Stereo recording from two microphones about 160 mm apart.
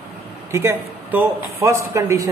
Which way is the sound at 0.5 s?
15° right (ahead or behind).